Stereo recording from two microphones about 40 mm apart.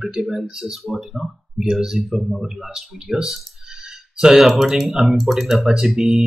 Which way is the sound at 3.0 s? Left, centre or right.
Centre.